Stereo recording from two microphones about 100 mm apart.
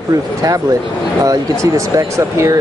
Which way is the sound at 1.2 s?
35° right (ahead or behind).